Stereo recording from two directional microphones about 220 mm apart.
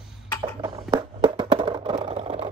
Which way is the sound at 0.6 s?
20° right (ahead or behind).